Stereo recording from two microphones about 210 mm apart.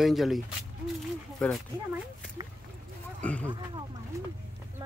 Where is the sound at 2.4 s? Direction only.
20° right (ahead or behind).